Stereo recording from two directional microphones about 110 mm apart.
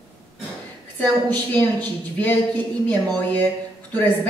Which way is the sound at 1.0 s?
15° left (ahead or behind).